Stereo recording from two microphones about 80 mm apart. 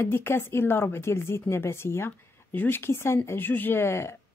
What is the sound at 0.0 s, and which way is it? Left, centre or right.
A woman's voice, left.